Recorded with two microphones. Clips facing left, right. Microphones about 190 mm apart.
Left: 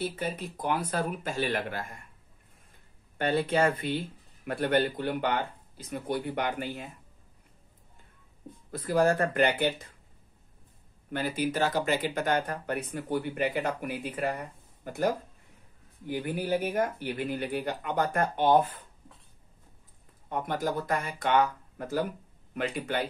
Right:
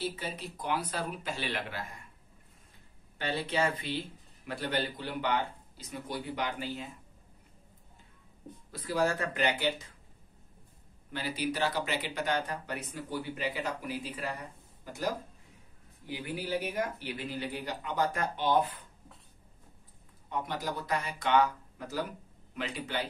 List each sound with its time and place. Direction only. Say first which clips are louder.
0.0 s speech: left 4 dB; 50° left (ahead or behind)
3.2 s speech: left 6 dB; 50° left (ahead or behind)
8.7 s speech: left 5 dB; 50° left (ahead or behind)
11.1 s speech: left 4 dB; 50° left (ahead or behind)
20.2 s speech: left 5 dB; 50° left (ahead or behind)